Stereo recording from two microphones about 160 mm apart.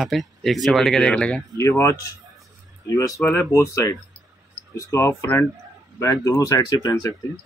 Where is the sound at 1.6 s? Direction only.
15° left (ahead or behind).